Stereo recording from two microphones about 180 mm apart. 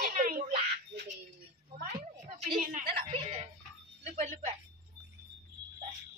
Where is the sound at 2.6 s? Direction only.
55° right (ahead or behind).